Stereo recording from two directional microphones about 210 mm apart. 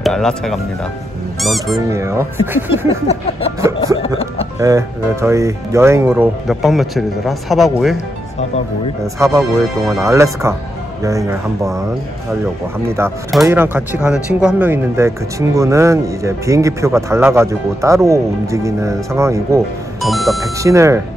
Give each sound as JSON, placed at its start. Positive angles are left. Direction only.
{"t": 0.0, "sound": "speech", "side_deg": 0}
{"t": 1.9, "sound": "speech", "side_deg": -15}
{"t": 3.1, "sound": "music", "side_deg": 30}
{"t": 4.6, "sound": "speech", "side_deg": -15}
{"t": 6.4, "sound": "speech", "side_deg": 0}
{"t": 9.0, "sound": "speech", "side_deg": -15}
{"t": 12.8, "sound": "speech", "side_deg": -10}
{"t": 20.0, "sound": "speech", "side_deg": 0}
{"t": 20.6, "sound": "speech", "side_deg": -15}